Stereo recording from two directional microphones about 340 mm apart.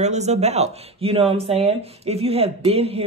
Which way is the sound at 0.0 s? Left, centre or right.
Centre.